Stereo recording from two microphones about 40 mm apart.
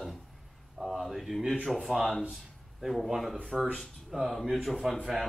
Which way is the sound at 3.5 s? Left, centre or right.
Centre.